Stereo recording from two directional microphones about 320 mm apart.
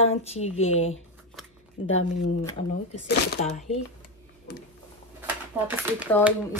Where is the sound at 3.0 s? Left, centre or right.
Left.